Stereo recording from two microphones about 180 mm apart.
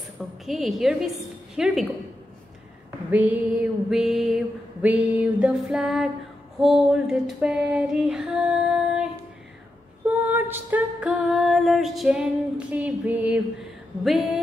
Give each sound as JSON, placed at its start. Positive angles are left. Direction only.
{"t": 0.5, "sound": "female singing", "side_deg": 0}
{"t": 3.1, "sound": "female singing", "side_deg": -10}